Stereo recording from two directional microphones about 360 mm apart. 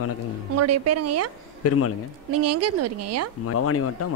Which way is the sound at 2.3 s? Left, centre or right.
Right.